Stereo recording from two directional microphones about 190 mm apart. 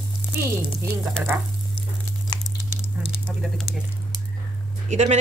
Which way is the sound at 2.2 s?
25° left (ahead or behind).